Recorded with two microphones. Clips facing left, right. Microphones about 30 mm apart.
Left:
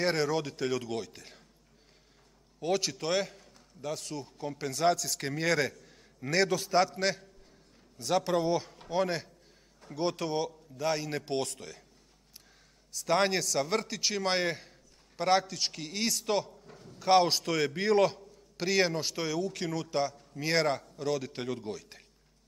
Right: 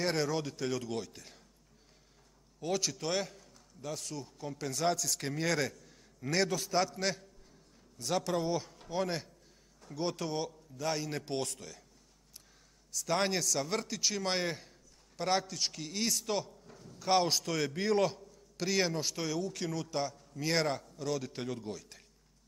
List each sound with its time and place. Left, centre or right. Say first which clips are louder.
0.0 s a man's voice: left 3 dB; centre
2.6 s a man's voice: left 4 dB; centre
12.9 s a man's voice: left 4 dB; centre
20.2 s a man's voice: left 2 dB; centre
20.5 s a man's voice: left 4 dB; centre